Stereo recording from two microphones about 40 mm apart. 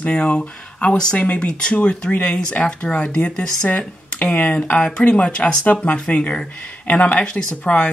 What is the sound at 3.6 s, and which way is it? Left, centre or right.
Speech, left.